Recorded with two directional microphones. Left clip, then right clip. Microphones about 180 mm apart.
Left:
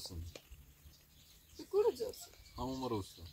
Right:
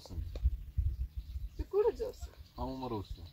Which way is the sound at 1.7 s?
15° left (ahead or behind).